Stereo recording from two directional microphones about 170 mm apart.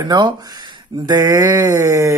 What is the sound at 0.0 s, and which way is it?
Speech, 25° right (ahead or behind).